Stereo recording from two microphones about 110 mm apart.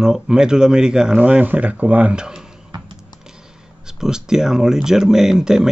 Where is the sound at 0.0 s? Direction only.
5° right (ahead or behind).